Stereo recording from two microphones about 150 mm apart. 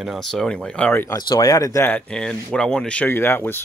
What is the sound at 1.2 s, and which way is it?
Speech, 25° left (ahead or behind).